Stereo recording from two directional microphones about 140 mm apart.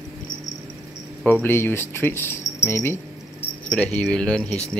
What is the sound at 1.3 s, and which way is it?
Speech, 15° left (ahead or behind).